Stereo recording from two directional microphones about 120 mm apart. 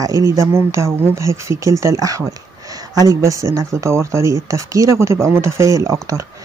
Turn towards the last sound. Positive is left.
turn(degrees=-25)  # may be behind; listen again after turning